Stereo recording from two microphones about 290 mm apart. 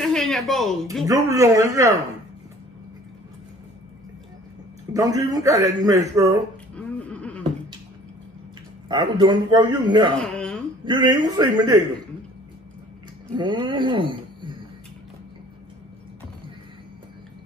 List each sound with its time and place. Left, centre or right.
0.0 s speech: centre
1.0 s a man's voice: centre
4.9 s a man's voice: centre
6.7 s a sound: centre
8.8 s a man's voice: centre
10.1 s speech: centre
10.9 s a man's voice: centre
13.4 s speech: centre